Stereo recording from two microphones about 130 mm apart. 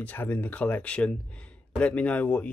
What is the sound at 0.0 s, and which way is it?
Speech, 15° left (ahead or behind).